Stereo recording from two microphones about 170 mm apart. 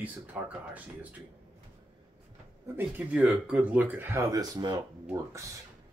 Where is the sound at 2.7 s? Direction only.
10° right (ahead or behind).